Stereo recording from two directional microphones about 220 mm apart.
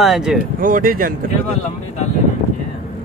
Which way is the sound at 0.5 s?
40° right (ahead or behind).